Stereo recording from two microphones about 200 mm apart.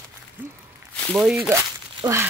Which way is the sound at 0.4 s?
10° right (ahead or behind).